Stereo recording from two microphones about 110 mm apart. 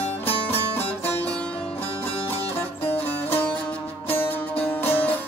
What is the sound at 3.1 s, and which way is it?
Music, 15° left (ahead or behind).